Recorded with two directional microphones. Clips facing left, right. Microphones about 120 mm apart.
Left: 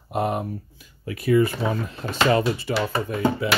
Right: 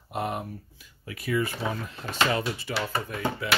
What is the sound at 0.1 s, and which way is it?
Speech, 30° left (ahead or behind).